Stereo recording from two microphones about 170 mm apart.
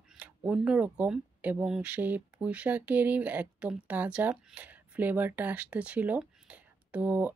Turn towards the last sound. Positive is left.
turn(degrees=-10)  # may be behind; listen again after turning